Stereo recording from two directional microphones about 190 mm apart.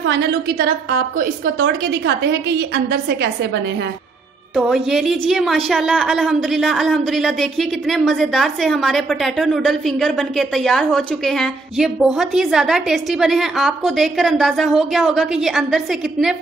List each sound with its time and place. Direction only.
1.1 s a woman's voice: 50° right (ahead or behind)
1.6 s a woman's voice: 65° right (ahead or behind)
4.6 s speech: centre (ahead or behind)